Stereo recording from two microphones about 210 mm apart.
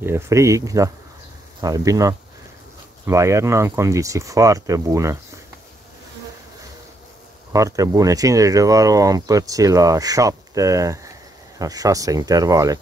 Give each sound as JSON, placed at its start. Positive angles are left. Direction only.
{"t": 0.0, "sound": "speech", "side_deg": -15}
{"t": 7.5, "sound": "speech", "side_deg": -15}